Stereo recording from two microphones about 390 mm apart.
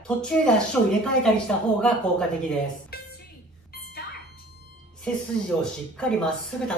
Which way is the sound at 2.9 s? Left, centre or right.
Left.